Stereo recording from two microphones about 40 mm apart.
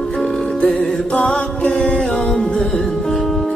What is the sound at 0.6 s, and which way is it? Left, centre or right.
Music, left.